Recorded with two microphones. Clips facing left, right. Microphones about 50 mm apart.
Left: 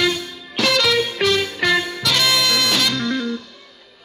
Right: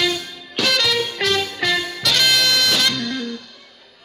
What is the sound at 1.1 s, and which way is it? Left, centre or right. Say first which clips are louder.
Music: left 2 dB; left.